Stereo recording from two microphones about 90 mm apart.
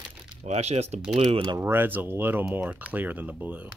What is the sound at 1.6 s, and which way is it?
Speech, 25° right (ahead or behind).